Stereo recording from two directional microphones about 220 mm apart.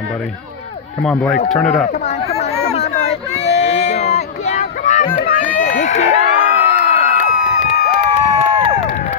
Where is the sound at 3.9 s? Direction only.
30° left (ahead or behind).